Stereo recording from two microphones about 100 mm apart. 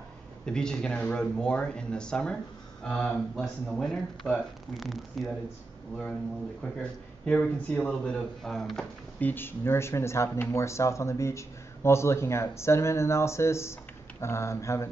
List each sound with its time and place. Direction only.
0.5 s speech: 5° left (ahead or behind)
6.8 s speech: 10° left (ahead or behind)
8.4 s speech: centre (ahead or behind)
9.2 s speech: 20° left (ahead or behind)